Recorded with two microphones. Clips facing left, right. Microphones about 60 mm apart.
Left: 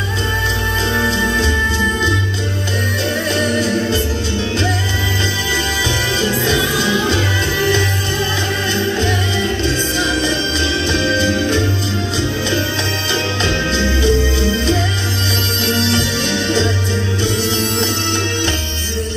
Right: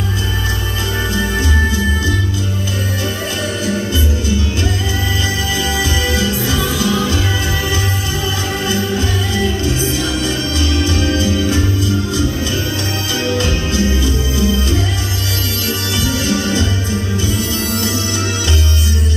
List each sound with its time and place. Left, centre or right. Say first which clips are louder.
3.3 s music: left 3 dB; left
6.3 s music: left 2 dB; left
8.6 s music: right 2 dB; left
9.6 s music: even; left
13.4 s music: even; left
15.6 s music: left 4 dB; left